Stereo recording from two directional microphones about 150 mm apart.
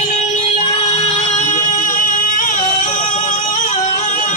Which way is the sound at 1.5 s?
60° left (ahead or behind).